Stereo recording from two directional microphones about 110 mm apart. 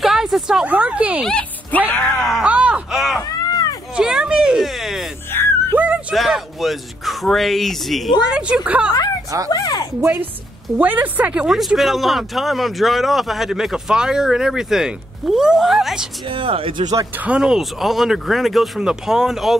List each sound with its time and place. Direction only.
0.0 s a sound: centre (ahead or behind)
0.7 s speech: 10° right (ahead or behind)
1.2 s speech: 10° left (ahead or behind)
2.0 s speech: centre (ahead or behind)
2.4 s a sound: 10° right (ahead or behind)
2.9 s speech: centre (ahead or behind)
5.3 s music: 25° left (ahead or behind)
5.8 s a sound: 10° right (ahead or behind)
6.1 s speech: centre (ahead or behind)
9.5 s a sound: 35° left (ahead or behind)
9.9 s speech: 15° right (ahead or behind)
16.3 s speech: 55° right (ahead or behind)
17.2 s speech: 10° right (ahead or behind)